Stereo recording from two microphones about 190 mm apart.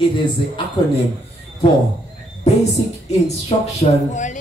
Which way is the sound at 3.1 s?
35° left (ahead or behind).